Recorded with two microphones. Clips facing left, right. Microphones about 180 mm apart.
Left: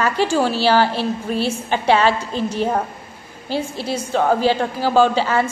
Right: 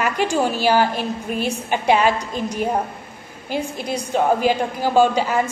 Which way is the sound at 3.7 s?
15° right (ahead or behind).